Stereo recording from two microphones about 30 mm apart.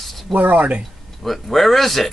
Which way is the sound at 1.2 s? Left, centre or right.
Centre.